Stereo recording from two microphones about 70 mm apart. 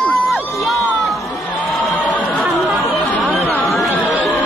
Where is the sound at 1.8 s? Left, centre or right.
Centre.